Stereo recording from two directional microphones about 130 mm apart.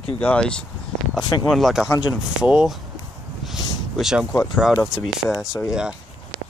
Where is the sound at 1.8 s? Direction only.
25° left (ahead or behind).